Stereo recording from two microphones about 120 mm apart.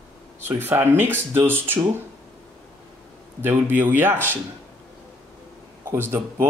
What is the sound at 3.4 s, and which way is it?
A man's voice, 20° right (ahead or behind).